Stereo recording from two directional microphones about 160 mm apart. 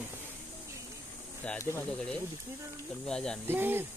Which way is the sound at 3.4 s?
15° right (ahead or behind).